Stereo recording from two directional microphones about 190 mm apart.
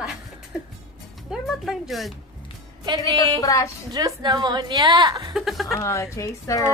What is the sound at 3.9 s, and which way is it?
A woman's voice, 20° right (ahead or behind).